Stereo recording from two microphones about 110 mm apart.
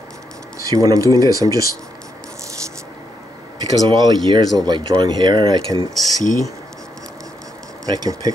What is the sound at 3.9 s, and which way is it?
Speech, 45° right (ahead or behind).